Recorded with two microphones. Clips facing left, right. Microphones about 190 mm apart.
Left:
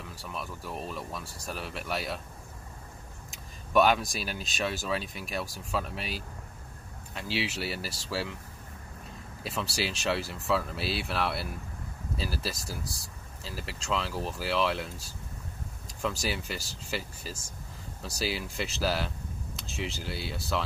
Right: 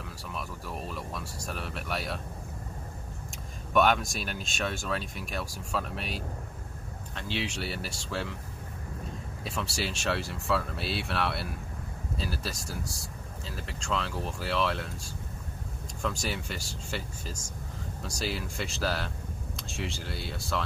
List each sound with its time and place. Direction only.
0.0 s speech: centre (ahead or behind)
3.7 s speech: centre (ahead or behind)
9.4 s speech: centre (ahead or behind)